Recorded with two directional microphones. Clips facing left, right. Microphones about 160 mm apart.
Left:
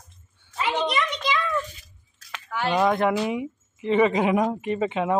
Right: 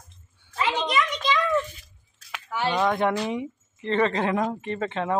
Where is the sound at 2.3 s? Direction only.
5° right (ahead or behind).